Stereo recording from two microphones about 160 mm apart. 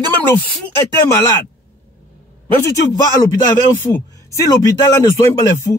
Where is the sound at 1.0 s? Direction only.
20° left (ahead or behind).